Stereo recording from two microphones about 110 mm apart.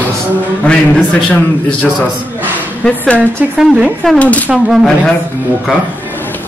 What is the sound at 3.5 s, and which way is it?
Speech, 10° right (ahead or behind).